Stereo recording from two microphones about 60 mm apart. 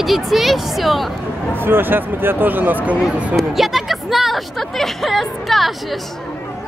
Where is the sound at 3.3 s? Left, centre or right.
Centre.